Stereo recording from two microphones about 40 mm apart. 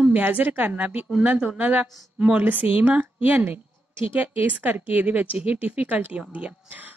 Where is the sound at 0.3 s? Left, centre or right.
Right.